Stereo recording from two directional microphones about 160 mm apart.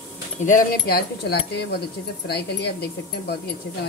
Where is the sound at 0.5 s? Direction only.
65° left (ahead or behind).